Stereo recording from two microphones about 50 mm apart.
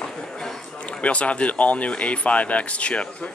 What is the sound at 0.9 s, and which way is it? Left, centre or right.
Speech, left.